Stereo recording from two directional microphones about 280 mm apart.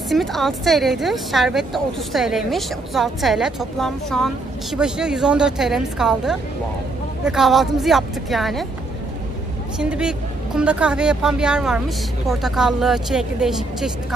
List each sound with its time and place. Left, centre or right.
0.1 s speech: centre
9.8 s speech: centre